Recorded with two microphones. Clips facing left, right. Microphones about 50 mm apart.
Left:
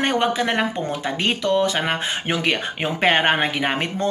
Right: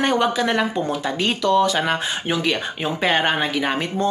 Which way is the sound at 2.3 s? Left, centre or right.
Left.